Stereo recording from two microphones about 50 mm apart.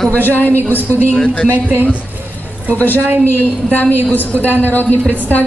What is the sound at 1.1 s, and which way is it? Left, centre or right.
Speech, left.